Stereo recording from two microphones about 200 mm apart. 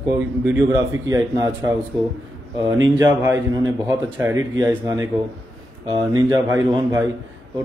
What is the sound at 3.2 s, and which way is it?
A man's voice, 15° right (ahead or behind).